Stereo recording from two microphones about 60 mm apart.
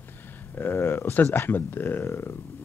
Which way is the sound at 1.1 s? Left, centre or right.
Left.